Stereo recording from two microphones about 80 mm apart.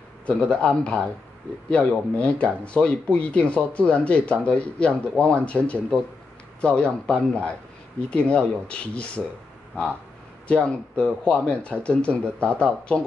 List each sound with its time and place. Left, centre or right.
0.3 s speech: centre
10.5 s speech: centre